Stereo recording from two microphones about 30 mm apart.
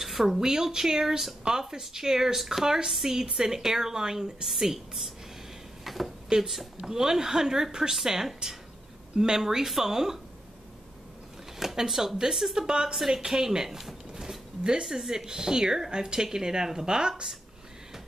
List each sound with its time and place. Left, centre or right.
0.0 s a sound: centre
0.3 s speech: centre
2.6 s speech: centre
5.9 s a sound: centre
6.2 s speech: centre
6.5 s speech: centre
6.9 s speech: centre
9.1 s speech: right
11.6 s speech: centre
12.9 s speech: centre
13.2 s speech: centre